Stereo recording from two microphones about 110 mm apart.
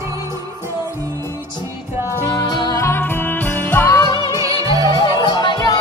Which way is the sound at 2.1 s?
30° left (ahead or behind).